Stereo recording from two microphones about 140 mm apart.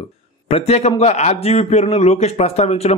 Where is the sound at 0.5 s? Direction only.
45° left (ahead or behind).